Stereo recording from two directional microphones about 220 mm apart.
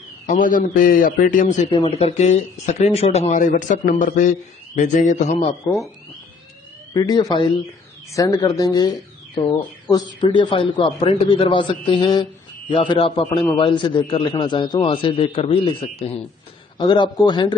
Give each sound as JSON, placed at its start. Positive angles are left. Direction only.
{"t": 0.3, "sound": "a man's voice", "side_deg": 40}
{"t": 6.9, "sound": "a man's voice", "side_deg": 20}